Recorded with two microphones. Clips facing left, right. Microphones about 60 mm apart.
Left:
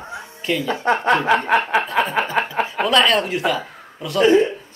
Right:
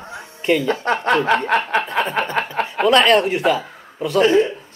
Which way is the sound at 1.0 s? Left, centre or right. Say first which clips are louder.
Right 2 dB; centre.